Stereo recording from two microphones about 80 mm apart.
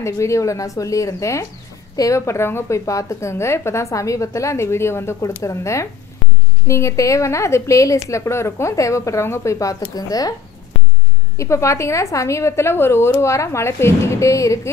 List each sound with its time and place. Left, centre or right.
0.0 s a woman's voice: left
11.3 s a woman's voice: left